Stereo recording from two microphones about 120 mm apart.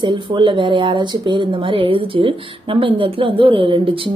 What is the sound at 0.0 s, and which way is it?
A woman's voice, 40° right (ahead or behind).